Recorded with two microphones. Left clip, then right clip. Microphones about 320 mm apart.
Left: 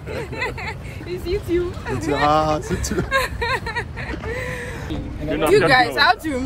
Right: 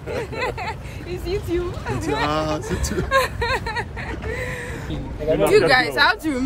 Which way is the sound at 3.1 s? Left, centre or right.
Centre.